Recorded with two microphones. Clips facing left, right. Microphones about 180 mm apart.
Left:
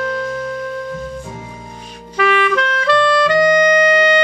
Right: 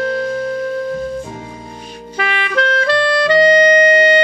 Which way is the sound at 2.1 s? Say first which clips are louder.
Left 4 dB; 35° right (ahead or behind).